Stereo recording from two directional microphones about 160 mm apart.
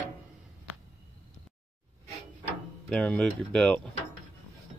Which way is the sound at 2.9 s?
5° left (ahead or behind).